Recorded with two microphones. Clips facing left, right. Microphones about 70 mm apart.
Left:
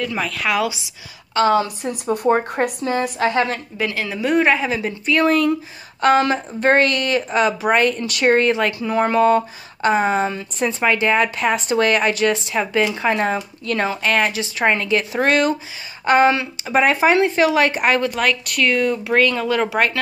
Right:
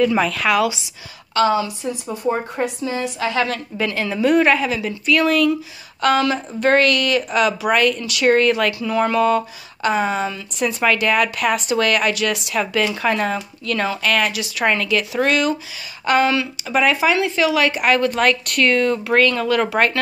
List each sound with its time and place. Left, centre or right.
0.0 s speech: centre
0.5 s speech: centre
1.5 s a woman's voice: left
3.7 s speech: centre
4.3 s a woman's voice: centre; by 18.0 s left
18.1 s speech: centre